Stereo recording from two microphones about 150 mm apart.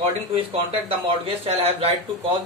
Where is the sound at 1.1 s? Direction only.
40° right (ahead or behind).